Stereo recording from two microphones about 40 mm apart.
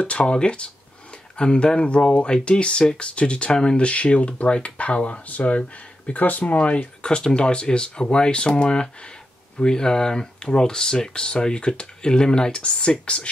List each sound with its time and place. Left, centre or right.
0.0 s speech: left
6.0 s speech: left